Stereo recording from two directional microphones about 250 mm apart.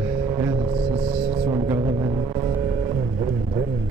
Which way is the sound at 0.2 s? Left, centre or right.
Centre.